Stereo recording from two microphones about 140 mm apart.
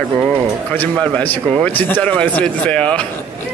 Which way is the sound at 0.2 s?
10° left (ahead or behind).